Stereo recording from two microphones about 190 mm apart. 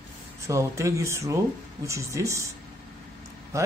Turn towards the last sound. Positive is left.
turn(degrees=-15)  # may be behind; listen again after turning